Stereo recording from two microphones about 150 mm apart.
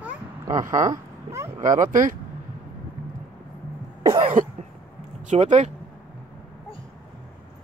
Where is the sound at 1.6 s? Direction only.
60° right (ahead or behind).